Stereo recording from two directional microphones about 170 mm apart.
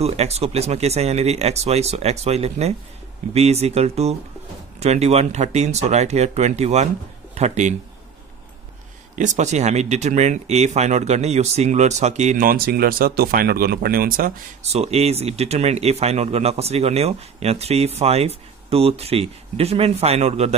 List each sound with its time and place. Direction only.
0.0 s speech: 40° right (ahead or behind)
9.1 s speech: 45° right (ahead or behind)
14.6 s speech: 40° right (ahead or behind)